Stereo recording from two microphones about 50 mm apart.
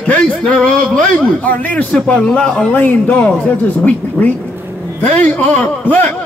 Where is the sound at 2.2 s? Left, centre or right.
Centre.